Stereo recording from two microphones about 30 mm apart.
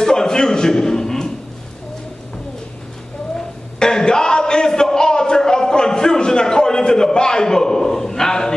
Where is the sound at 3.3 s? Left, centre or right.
Left.